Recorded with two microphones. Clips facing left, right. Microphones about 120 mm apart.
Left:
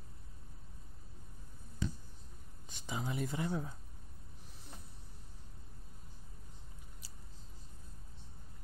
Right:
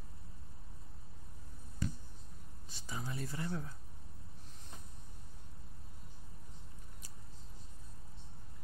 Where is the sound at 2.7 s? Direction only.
15° left (ahead or behind).